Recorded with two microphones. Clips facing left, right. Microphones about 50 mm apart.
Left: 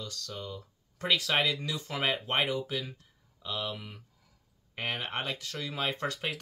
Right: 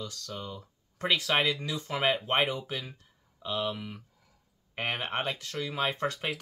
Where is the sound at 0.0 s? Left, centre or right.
Right.